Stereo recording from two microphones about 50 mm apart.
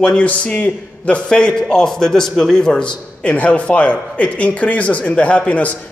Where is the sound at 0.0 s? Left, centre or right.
Centre.